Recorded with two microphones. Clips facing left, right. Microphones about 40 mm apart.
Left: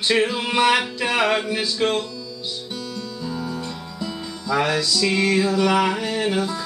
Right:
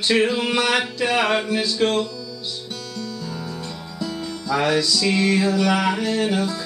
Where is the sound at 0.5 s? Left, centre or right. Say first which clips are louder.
Left 5 dB; centre.